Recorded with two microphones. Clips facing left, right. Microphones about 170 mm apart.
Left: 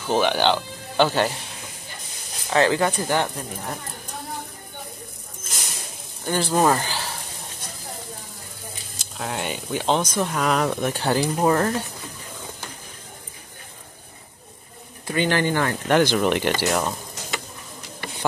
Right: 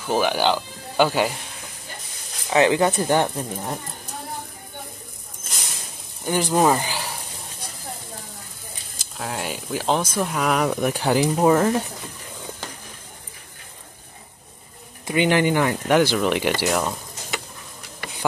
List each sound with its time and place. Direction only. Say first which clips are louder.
0.1 s speech: even; 5° right (ahead or behind)
2.5 s speech: right 2 dB; 20° right (ahead or behind)
6.2 s speech: right 1 dB; 10° right (ahead or behind)
9.1 s speech: left 1 dB; centre (ahead or behind)
15.0 s speech: right 3 dB; 15° right (ahead or behind); by 17.4 s centre (ahead or behind)